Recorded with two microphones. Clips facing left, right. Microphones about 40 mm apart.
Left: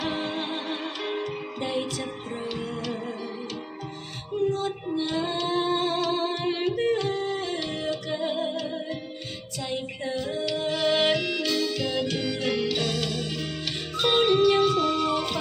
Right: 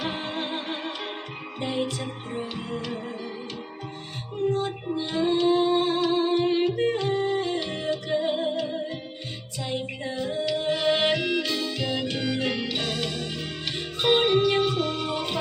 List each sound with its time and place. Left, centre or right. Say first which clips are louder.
0.0 s music: left 1 dB; centre
4.5 s music: right 4 dB; right
4.9 s humming: right 4 dB; centre
9.6 s music: right 1 dB; centre